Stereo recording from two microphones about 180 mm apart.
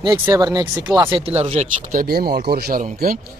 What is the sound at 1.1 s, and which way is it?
Speech, 35° right (ahead or behind).